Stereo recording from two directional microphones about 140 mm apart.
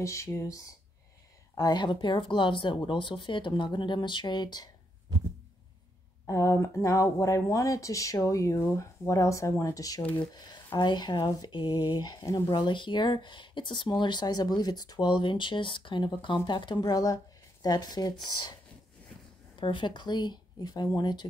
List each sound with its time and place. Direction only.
0.0 s speech: 20° left (ahead or behind)
6.2 s speech: 20° left (ahead or behind)
19.6 s speech: 35° left (ahead or behind)